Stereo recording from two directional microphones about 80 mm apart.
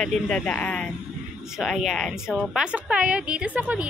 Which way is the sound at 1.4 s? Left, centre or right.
Centre.